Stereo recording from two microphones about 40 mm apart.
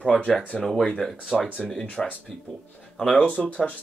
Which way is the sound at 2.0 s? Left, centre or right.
Centre.